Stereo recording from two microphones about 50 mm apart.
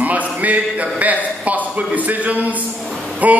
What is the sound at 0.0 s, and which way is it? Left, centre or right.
A man's voice, right.